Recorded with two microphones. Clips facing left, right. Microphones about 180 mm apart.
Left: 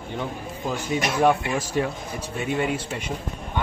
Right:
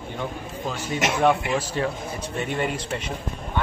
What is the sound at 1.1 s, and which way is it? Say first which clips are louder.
A man's voice: even; 10° left (ahead or behind).